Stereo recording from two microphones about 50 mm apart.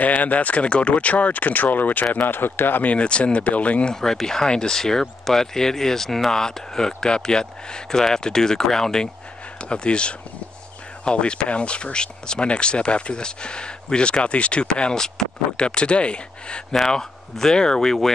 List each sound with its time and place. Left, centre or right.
0.0 s speech: left
2.9 s speech: left
3.9 s speech: centre
16.7 s speech: centre